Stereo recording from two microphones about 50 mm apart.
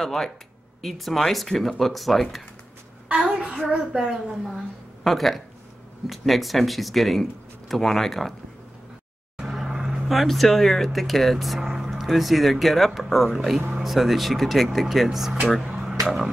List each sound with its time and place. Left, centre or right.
0.0 s speech: centre
3.2 s child singing: centre
3.9 s a woman's voice: centre
5.0 s speech: centre
9.4 s a sound: centre
10.0 s speech: centre
15.8 s a sound: centre